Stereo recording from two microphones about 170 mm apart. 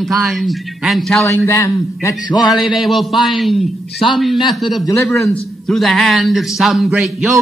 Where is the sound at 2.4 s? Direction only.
Centre (ahead or behind).